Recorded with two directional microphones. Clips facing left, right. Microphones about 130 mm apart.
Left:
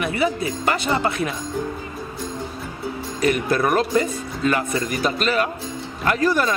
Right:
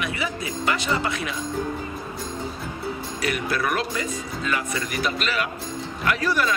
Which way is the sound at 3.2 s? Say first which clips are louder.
Left 6 dB; 45° left (ahead or behind).